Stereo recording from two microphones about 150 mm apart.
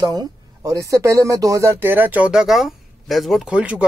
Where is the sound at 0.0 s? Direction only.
25° right (ahead or behind).